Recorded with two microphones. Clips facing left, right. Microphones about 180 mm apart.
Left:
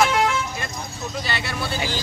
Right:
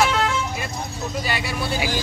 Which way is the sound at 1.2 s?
10° right (ahead or behind).